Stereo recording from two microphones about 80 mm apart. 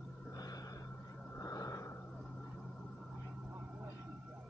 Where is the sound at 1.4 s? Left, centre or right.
Left.